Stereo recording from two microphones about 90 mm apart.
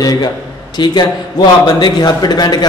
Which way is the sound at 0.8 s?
55° left (ahead or behind).